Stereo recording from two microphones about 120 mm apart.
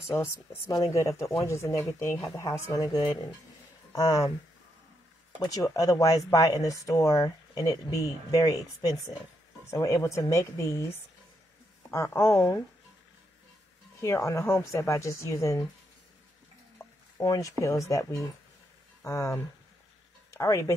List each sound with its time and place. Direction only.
0.0 s speech: 25° left (ahead or behind)
5.4 s speech: 30° left (ahead or behind)
11.9 s speech: 25° left (ahead or behind)
14.0 s speech: 25° left (ahead or behind)
16.7 s stir: 25° left (ahead or behind)
17.6 s speech: 25° left (ahead or behind)